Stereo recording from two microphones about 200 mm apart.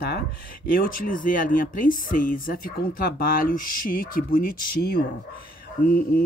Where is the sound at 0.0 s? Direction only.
50° left (ahead or behind).